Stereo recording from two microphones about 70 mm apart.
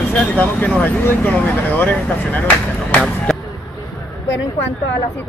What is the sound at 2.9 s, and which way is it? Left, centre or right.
Speech, centre.